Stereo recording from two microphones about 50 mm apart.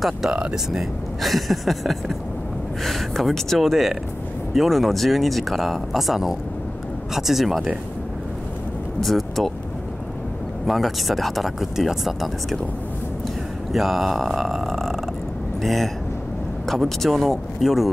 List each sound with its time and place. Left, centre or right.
0.3 s speech: centre
0.7 s speech: centre
9.0 s speech: centre
10.7 s speech: centre
13.7 s speech: centre
17.0 s speech: centre